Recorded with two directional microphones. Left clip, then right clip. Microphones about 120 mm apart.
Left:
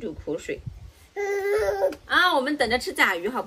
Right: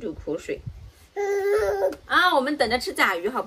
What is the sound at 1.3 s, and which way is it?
A man's voice, 10° right (ahead or behind).